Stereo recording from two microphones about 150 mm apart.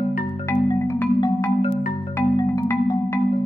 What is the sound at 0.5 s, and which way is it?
Marimba, 20° left (ahead or behind).